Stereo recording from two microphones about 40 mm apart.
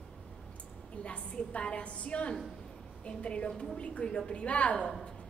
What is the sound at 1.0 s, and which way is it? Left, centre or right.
A woman's voice, left.